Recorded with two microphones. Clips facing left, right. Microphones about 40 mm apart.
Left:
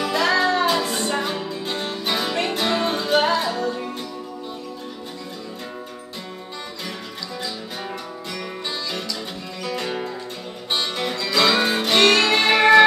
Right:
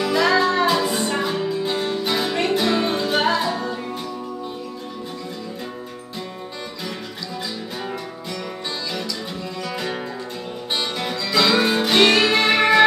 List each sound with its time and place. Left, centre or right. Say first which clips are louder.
0.0 s music: right 2 dB; centre
9.7 s music: left 3 dB; centre